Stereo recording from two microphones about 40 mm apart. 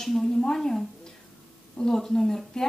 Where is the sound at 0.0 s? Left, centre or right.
Centre.